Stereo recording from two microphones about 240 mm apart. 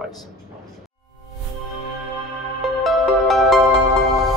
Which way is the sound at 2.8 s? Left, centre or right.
Centre.